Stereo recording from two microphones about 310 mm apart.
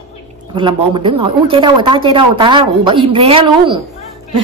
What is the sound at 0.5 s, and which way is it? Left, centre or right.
Speech, centre.